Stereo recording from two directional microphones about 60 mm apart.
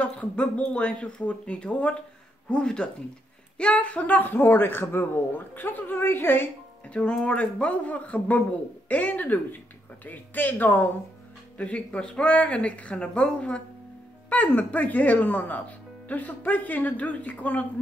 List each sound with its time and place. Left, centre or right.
0.0 s speech: left
6.9 s speech: centre